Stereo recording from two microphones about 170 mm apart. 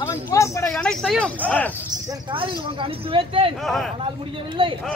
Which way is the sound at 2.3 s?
30° right (ahead or behind).